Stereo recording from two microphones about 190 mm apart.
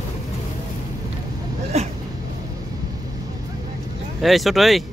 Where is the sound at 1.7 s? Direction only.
35° right (ahead or behind).